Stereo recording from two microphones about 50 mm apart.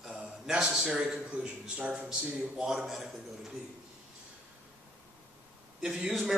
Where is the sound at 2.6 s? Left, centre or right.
Centre.